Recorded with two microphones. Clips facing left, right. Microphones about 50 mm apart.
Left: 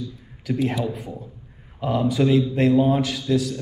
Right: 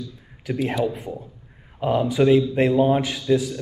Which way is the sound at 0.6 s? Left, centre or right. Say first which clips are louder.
Right 2 dB; centre.